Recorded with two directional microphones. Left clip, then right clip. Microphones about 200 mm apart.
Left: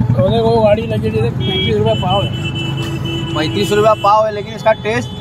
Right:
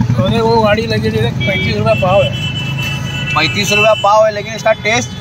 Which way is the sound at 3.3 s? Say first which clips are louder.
Right 3 dB; 5° right (ahead or behind).